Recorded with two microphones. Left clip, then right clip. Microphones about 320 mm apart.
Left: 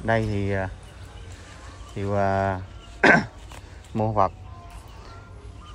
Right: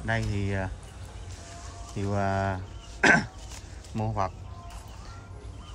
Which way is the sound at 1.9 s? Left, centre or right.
Centre.